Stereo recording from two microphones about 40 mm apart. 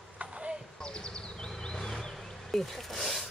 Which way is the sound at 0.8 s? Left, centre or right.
Left.